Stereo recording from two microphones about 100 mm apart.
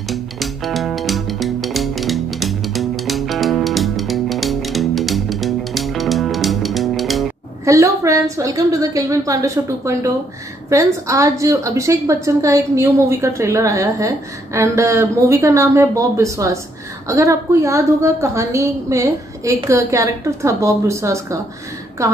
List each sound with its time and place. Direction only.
0.1 s music: centre (ahead or behind)
7.6 s a woman's voice: 30° right (ahead or behind)